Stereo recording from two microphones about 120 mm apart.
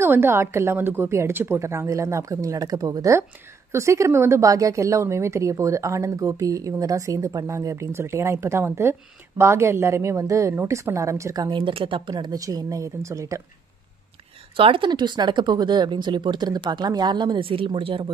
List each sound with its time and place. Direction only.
0.0 s a woman's voice: 20° right (ahead or behind)
14.6 s speech: 45° right (ahead or behind)